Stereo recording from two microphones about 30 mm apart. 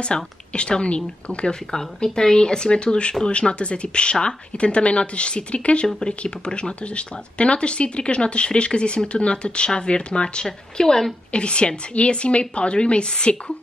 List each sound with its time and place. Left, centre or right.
0.0 s speech: left
2.1 s speech: left
10.4 s speech: centre
11.3 s speech: left